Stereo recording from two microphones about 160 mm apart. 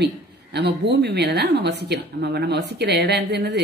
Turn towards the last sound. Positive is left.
turn(degrees=-90)